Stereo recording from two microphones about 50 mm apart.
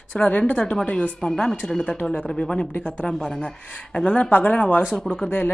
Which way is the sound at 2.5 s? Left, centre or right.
Left.